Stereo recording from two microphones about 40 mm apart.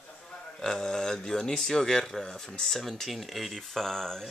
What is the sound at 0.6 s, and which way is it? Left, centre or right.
Speech, centre.